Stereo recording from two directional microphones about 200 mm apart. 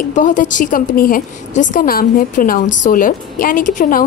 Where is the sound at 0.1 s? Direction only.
40° left (ahead or behind).